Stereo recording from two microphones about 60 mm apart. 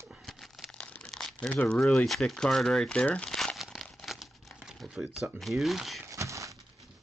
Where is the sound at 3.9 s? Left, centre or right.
Centre.